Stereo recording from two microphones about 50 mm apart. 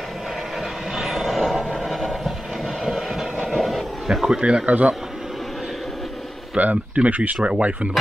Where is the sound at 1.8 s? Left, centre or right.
Centre.